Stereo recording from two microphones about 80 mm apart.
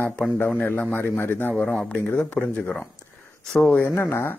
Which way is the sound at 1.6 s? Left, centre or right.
Centre.